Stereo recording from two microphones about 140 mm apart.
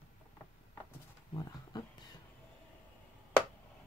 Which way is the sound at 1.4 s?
30° left (ahead or behind).